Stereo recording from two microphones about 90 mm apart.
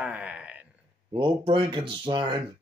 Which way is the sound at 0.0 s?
15° right (ahead or behind).